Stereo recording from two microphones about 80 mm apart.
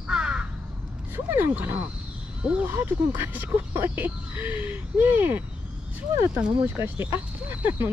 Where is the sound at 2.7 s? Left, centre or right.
Right.